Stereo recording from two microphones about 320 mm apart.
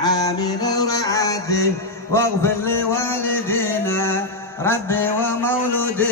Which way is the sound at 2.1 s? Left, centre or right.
Centre.